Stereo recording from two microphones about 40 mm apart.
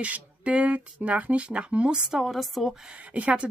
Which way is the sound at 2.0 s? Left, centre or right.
Centre.